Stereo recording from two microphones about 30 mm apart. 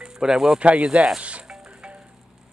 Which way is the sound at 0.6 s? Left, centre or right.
Right.